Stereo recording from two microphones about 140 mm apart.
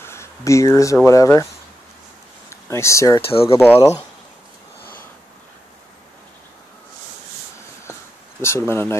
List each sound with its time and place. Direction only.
0.0 s a sound: 20° left (ahead or behind)
1.0 s speech: 20° left (ahead or behind)
2.5 s speech: 20° left (ahead or behind)
3.2 s speech: 40° left (ahead or behind)
3.5 s speech: 15° left (ahead or behind)
8.4 s speech: 20° left (ahead or behind)